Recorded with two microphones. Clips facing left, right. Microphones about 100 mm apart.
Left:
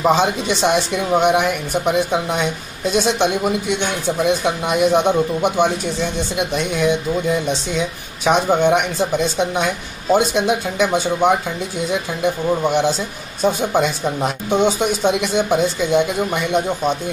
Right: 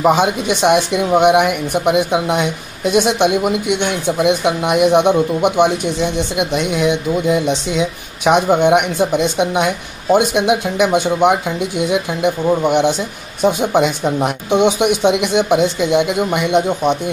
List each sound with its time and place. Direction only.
0.0 s speech: 10° right (ahead or behind)